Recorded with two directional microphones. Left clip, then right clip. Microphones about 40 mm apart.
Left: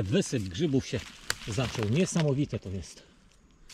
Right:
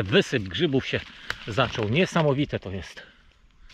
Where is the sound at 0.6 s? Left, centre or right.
Left.